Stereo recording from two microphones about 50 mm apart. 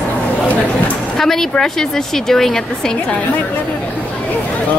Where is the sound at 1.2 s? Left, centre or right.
Centre.